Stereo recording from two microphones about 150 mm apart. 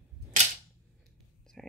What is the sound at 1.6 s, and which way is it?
Whispering, 5° left (ahead or behind).